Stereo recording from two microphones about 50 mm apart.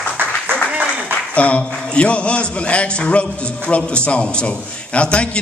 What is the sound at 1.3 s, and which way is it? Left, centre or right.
A man's voice, left.